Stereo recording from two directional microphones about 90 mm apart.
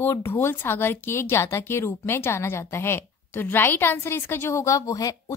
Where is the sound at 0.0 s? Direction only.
25° left (ahead or behind).